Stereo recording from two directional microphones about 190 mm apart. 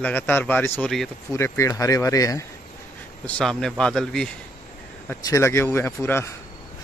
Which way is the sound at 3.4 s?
5° left (ahead or behind).